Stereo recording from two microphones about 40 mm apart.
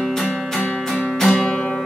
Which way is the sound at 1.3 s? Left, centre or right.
Left.